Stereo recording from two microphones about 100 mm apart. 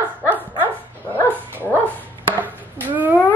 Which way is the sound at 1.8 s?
15° left (ahead or behind).